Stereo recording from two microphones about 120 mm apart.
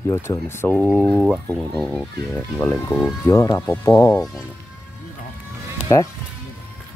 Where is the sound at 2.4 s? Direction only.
15° left (ahead or behind).